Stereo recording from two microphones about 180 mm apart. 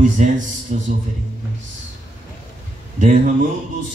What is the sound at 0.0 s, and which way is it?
Speech, 45° right (ahead or behind).